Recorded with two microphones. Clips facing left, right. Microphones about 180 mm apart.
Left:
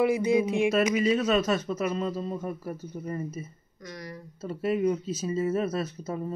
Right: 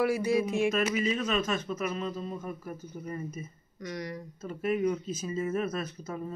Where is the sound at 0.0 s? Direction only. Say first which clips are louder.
Left 3 dB; 20° left (ahead or behind).